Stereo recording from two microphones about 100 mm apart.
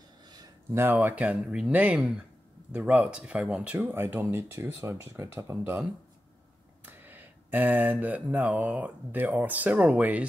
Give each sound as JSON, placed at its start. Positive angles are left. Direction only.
{"t": 0.7, "sound": "speech", "side_deg": -20}
{"t": 6.9, "sound": "mantra", "side_deg": -20}
{"t": 9.3, "sound": "speech", "side_deg": -15}